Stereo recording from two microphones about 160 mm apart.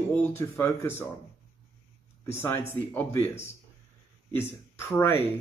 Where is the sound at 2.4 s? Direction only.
15° left (ahead or behind).